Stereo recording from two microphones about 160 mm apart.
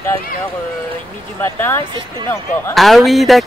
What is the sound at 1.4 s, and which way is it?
Speech, 15° left (ahead or behind).